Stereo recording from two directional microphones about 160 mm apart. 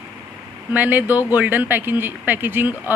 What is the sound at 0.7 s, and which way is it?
Speech, 10° right (ahead or behind).